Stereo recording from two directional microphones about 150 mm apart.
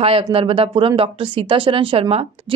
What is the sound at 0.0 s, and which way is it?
Speech, 40° right (ahead or behind).